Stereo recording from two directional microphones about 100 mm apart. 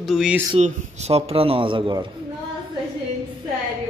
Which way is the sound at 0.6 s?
90° right.